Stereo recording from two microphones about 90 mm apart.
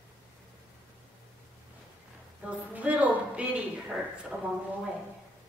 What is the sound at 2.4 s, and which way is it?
A woman's voice, 15° right (ahead or behind).